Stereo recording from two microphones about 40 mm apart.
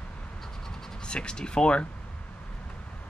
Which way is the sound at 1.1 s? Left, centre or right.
Left.